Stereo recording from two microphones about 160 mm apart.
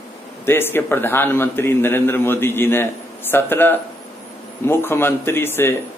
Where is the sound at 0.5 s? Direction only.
15° left (ahead or behind).